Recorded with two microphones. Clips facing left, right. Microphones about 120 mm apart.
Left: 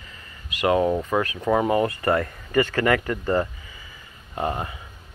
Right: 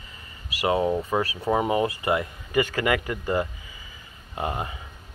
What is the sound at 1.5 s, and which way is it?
Speech, 15° right (ahead or behind).